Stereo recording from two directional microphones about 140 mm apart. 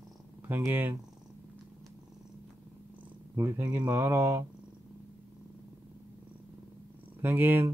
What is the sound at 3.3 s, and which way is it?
Speech, 20° right (ahead or behind).